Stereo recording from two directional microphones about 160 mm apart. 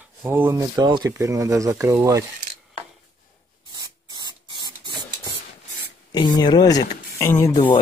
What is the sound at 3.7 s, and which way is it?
Spray, 25° right (ahead or behind).